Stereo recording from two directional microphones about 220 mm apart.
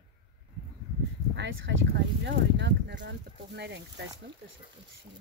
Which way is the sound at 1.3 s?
55° right (ahead or behind).